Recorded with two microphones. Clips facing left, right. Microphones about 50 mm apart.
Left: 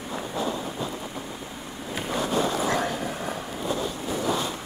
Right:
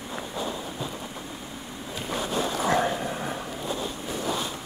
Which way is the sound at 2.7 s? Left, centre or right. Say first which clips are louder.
Right 2 dB; centre.